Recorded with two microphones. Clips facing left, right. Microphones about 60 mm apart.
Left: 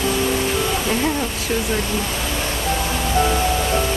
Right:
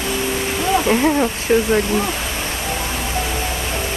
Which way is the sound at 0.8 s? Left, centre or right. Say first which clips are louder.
Right 5 dB; right.